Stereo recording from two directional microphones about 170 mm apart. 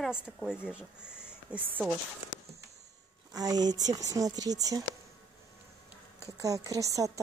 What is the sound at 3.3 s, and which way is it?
Speech, 20° right (ahead or behind).